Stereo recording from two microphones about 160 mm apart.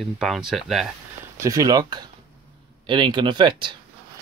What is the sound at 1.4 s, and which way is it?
Speech, 20° right (ahead or behind).